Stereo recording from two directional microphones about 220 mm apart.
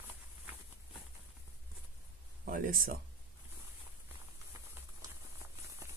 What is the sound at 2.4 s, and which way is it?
Speech, 40° right (ahead or behind).